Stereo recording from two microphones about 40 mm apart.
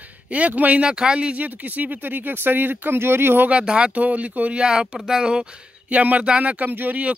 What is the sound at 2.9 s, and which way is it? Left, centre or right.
Speech, right.